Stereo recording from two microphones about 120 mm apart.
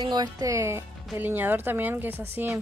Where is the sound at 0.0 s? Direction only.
35° right (ahead or behind).